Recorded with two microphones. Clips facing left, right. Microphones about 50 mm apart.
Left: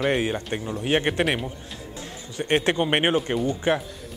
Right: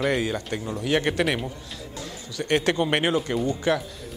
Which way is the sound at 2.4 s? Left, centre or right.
Left.